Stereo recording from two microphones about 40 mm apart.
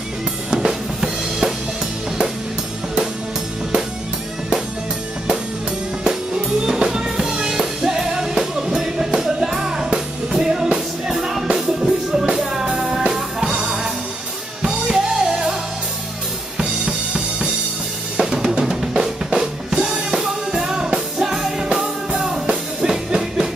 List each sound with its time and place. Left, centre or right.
0.5 s drum kit: centre
6.0 s music: centre
16.8 s drum kit: right
18.3 s drum: right
19.3 s music: centre